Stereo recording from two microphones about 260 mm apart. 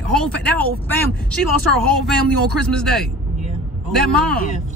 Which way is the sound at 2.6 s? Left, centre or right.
Centre.